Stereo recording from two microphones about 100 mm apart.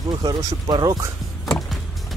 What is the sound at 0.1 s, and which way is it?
Speech, 45° right (ahead or behind).